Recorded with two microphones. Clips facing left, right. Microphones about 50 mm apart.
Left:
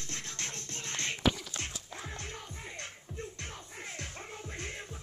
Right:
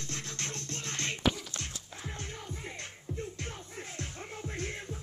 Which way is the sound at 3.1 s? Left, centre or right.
Centre.